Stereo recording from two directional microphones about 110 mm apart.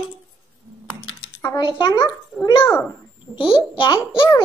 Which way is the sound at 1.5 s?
45° left (ahead or behind).